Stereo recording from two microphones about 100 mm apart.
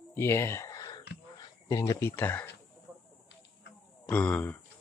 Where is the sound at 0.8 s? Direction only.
40° left (ahead or behind).